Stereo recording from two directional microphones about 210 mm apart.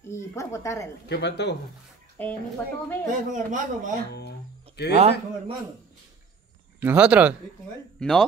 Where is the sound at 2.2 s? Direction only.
10° left (ahead or behind).